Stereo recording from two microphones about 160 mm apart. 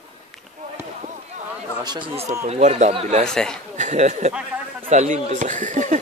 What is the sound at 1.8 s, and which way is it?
Speech, 30° right (ahead or behind).